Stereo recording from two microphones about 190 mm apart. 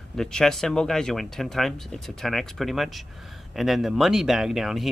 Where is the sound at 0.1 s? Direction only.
5° left (ahead or behind).